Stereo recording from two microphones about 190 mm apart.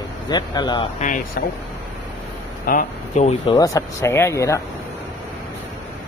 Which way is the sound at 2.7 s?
40° left (ahead or behind).